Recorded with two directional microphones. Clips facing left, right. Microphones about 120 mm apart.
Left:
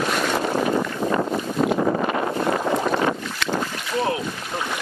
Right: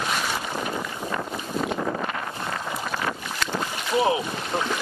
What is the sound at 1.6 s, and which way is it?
Wind noise, 45° left (ahead or behind).